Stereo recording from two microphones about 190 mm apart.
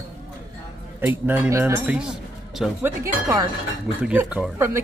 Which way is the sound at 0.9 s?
10° right (ahead or behind).